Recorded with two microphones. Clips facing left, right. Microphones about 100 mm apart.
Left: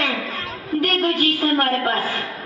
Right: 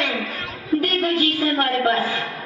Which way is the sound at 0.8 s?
55° left (ahead or behind).